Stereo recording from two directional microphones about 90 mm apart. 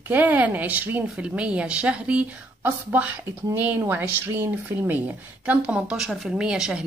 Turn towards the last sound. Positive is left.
turn(degrees=-10)  # may be behind; listen again after turning